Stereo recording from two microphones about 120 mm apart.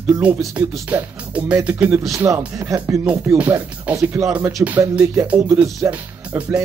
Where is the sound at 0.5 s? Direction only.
15° right (ahead or behind).